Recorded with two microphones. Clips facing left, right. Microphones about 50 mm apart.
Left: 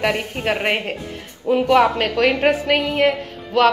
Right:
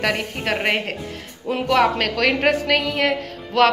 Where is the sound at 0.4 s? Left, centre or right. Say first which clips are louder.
Left 3 dB; centre.